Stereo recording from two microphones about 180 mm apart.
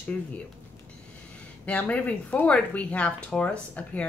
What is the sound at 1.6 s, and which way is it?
A woman's voice, 10° left (ahead or behind).